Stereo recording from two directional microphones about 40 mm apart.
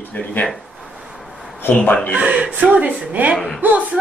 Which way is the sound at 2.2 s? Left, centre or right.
Right.